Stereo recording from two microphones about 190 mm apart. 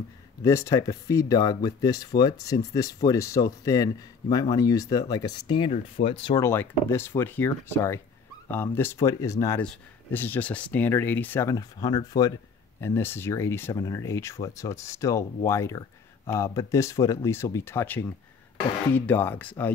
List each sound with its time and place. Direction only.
0.4 s speech: 15° left (ahead or behind)
6.4 s speech: 15° left (ahead or behind)